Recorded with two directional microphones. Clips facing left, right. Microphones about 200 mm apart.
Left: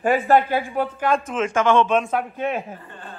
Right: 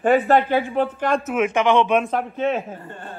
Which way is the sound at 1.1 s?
10° right (ahead or behind).